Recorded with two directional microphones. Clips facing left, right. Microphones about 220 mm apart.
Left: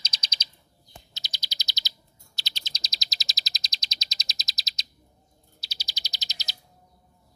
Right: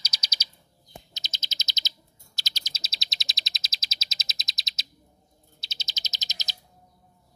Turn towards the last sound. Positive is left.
turn(degrees=-20)  # may be behind; listen again after turning